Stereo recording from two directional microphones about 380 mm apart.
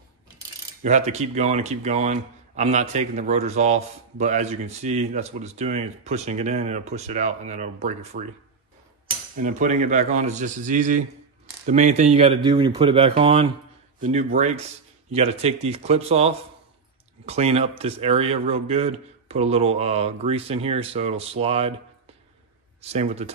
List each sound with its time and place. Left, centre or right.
0.8 s speech: centre
9.4 s a man's voice: centre
22.8 s speech: centre